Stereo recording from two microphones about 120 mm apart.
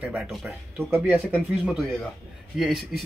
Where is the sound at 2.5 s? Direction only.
Centre (ahead or behind).